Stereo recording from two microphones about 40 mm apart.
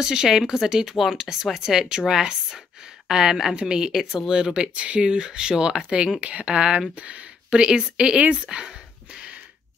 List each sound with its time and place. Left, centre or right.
0.0 s speech: centre
4.7 s speech: right
7.0 s speech: right
8.6 s a sound: right